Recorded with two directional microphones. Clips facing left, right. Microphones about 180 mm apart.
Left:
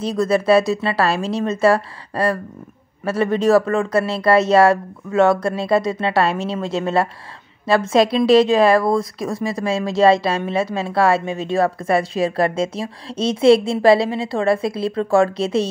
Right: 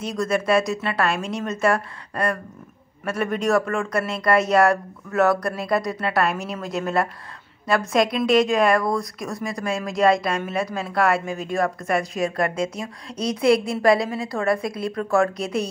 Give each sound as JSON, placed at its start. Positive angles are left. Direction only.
{"t": 0.0, "sound": "a woman's voice", "side_deg": 30}